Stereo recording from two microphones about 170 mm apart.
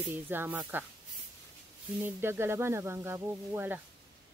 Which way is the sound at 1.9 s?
15° right (ahead or behind).